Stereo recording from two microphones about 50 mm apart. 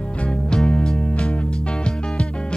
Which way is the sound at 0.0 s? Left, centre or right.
Left.